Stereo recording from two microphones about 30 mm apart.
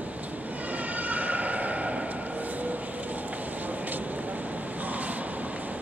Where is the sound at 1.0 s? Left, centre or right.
Right.